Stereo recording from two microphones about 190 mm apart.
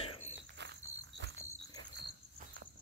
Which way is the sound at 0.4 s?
65° right (ahead or behind).